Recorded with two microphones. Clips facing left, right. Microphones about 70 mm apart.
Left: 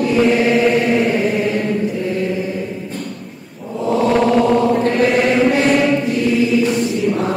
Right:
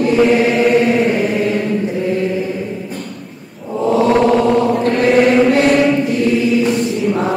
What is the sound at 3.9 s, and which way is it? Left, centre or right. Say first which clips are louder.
Mantra: right 3 dB; right.